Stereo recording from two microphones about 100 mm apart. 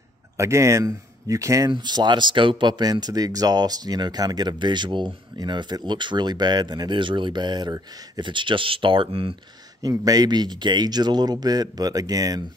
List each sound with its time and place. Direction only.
0.4 s speech: 30° right (ahead or behind)
1.7 s speech: 45° right (ahead or behind); by 9.4 s 65° right (ahead or behind)
9.8 s speech: 40° right (ahead or behind)